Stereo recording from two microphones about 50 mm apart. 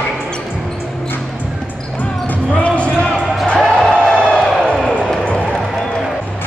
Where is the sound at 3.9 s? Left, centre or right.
Centre.